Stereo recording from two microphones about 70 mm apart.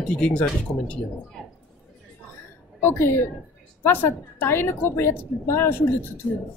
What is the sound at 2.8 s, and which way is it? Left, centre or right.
A woman's voice, left.